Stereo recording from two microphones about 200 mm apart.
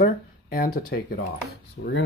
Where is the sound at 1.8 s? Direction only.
85° left.